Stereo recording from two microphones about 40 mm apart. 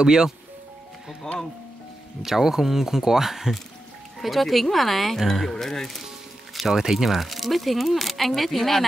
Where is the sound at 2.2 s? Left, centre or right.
Centre.